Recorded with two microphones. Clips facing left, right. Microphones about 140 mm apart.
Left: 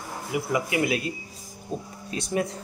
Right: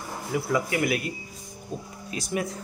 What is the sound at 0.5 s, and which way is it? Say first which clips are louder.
Speech: even; 20° left (ahead or behind).